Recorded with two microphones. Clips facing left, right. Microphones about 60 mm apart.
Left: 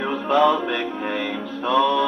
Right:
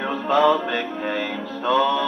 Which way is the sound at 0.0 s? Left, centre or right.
Centre.